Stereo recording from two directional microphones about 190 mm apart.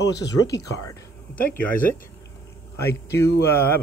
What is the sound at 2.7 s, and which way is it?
Speech, 15° left (ahead or behind).